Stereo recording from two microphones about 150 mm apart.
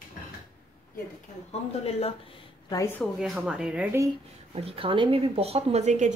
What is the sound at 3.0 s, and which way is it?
Speech, centre (ahead or behind).